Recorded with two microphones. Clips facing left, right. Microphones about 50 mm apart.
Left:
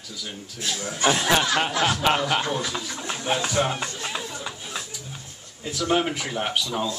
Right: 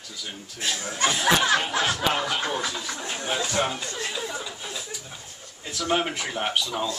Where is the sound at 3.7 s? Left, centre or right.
Left.